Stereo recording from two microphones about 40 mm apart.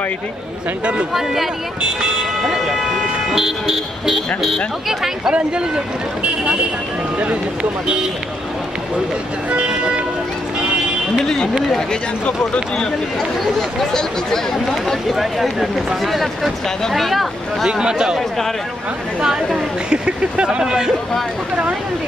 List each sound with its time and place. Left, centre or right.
1.1 s a man's voice: centre
2.7 s vehicle: centre
4.8 s a man's voice: centre
6.2 s speech: right
9.5 s speech: right
12.7 s speech: centre
14.9 s speech: centre
17.6 s a man's voice: centre
19.2 s a man's voice: centre
19.9 s speech: right